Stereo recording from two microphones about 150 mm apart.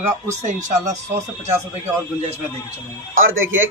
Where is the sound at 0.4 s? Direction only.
55° right (ahead or behind).